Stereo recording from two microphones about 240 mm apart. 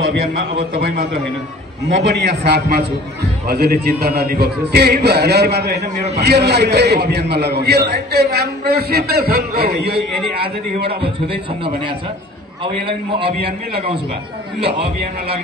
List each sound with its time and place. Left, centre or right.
0.0 s a man's voice: right
1.9 s a man's voice: right
10.3 s a man's voice: right
12.8 s a man's voice: right
14.6 s a man's voice: right